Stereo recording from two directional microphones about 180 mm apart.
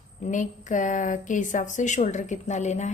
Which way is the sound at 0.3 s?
45° left (ahead or behind).